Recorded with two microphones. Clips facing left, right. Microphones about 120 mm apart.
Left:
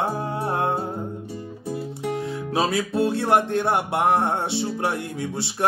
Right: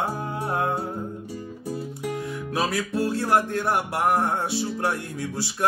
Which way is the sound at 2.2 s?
25° left (ahead or behind).